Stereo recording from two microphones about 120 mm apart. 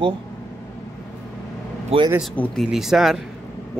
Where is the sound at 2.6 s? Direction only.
5° right (ahead or behind).